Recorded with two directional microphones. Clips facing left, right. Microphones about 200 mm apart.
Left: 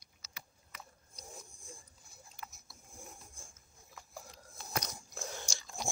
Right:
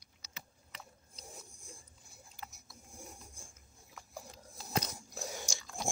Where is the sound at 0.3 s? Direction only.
25° right (ahead or behind).